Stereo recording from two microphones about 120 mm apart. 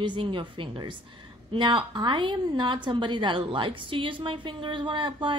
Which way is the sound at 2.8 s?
40° right (ahead or behind).